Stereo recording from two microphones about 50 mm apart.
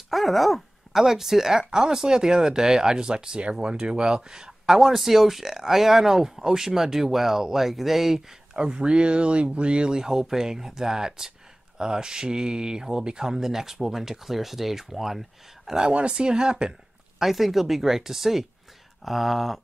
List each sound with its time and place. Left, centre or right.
0.1 s speech: centre
8.5 s speech: centre
15.9 s speech: right
17.2 s speech: centre